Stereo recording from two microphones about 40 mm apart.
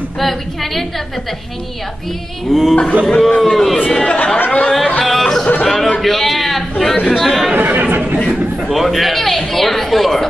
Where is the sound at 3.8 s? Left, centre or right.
Left.